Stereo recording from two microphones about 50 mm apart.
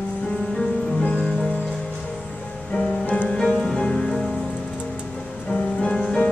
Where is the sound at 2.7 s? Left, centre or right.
Centre.